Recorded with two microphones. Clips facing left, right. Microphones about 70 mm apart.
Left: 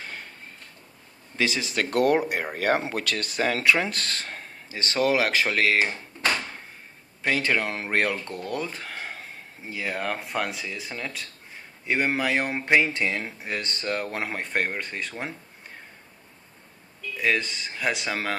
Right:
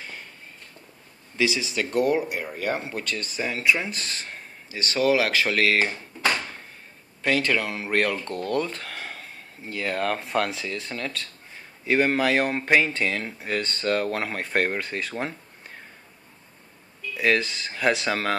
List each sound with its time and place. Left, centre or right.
1.3 s speech: left
4.6 s speech: left
7.2 s speech: left
8.1 s speech: centre
17.2 s speech: centre